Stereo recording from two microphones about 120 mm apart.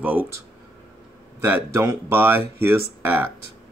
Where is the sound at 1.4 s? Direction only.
20° right (ahead or behind).